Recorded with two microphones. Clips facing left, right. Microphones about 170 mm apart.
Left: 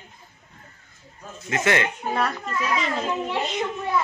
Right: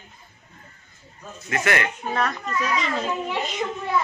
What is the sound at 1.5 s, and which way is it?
Speech, 20° left (ahead or behind).